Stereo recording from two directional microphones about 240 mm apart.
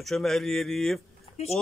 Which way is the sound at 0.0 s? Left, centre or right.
Centre.